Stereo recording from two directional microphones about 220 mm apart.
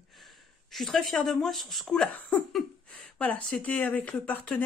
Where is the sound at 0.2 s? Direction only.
Centre (ahead or behind).